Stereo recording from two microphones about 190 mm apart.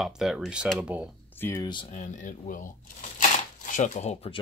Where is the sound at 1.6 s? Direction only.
25° left (ahead or behind).